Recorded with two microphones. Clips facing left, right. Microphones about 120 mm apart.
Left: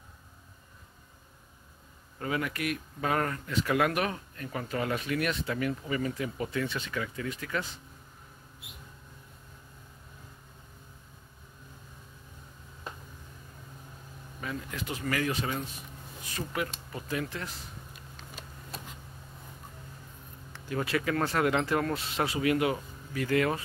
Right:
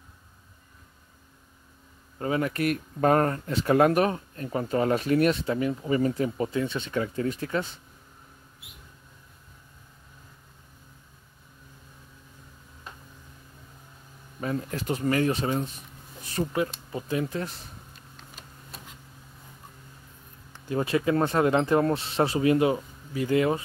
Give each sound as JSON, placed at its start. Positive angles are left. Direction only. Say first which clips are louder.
{"t": 2.1, "sound": "speech", "louder": "right 6 dB", "side_deg": -30}
{"t": 14.4, "sound": "speech", "louder": "right 7 dB", "side_deg": -40}
{"t": 18.1, "sound": "a sound", "louder": "left 2 dB", "side_deg": 0}
{"t": 20.5, "sound": "speech", "louder": "right 5 dB", "side_deg": -25}